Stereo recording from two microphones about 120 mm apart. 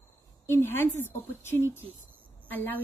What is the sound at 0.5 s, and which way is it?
A woman's voice, 20° left (ahead or behind).